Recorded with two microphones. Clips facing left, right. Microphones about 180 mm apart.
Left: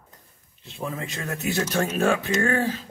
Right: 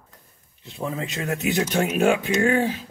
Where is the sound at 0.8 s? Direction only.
20° right (ahead or behind).